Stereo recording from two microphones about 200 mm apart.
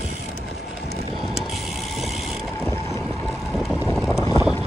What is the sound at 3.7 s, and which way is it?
Vehicle, 15° left (ahead or behind).